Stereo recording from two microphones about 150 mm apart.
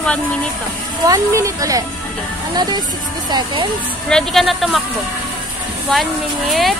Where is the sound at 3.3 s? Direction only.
30° right (ahead or behind).